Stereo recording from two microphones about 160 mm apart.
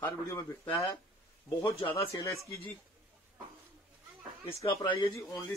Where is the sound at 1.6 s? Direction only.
30° left (ahead or behind).